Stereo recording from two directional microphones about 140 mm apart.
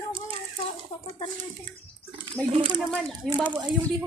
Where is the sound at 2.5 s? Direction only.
35° right (ahead or behind).